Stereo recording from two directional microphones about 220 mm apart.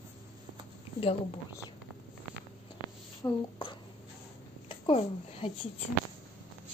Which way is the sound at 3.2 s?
20° left (ahead or behind).